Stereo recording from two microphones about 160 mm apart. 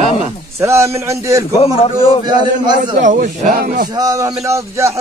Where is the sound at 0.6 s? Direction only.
15° right (ahead or behind).